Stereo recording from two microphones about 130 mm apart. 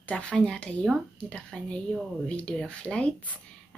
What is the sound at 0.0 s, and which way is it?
Speech, 10° left (ahead or behind).